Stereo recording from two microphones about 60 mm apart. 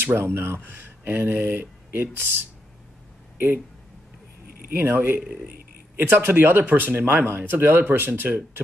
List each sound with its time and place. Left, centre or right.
0.0 s speech: right
3.3 s speech: right
4.7 s speech: right